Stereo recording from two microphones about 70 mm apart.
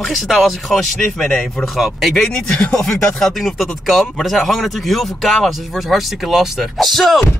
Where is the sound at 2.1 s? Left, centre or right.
Centre.